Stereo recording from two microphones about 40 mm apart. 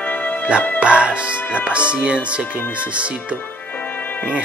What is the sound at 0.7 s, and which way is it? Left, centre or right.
Music, right.